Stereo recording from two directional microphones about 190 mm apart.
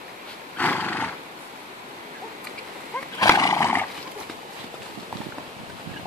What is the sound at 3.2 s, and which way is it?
Horse, 15° left (ahead or behind).